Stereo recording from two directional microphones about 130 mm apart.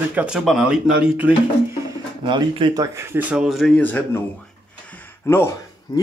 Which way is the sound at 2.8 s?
20° right (ahead or behind).